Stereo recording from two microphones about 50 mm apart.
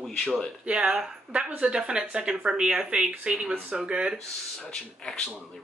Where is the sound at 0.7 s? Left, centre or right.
Right.